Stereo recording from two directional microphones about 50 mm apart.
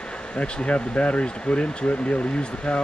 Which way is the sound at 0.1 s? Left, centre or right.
Left.